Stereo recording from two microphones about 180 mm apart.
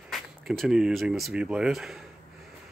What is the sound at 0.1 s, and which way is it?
Speech, centre (ahead or behind).